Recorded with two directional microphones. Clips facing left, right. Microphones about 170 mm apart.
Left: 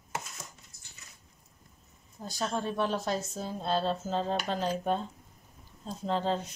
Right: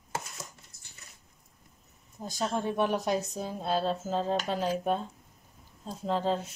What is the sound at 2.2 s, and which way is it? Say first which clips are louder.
A woman's voice: right 2 dB; 20° right (ahead or behind).